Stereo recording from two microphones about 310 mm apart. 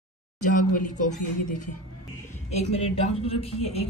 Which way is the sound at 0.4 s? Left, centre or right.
Left.